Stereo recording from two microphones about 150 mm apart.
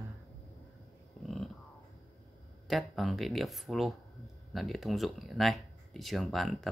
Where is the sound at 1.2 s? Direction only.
Centre (ahead or behind).